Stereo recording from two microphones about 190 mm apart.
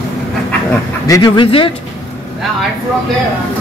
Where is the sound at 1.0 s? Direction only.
20° left (ahead or behind).